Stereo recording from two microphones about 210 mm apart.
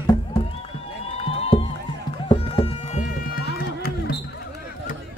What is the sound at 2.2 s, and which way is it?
Music, 25° left (ahead or behind).